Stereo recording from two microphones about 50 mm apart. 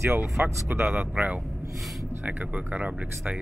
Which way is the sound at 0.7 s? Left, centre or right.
Right.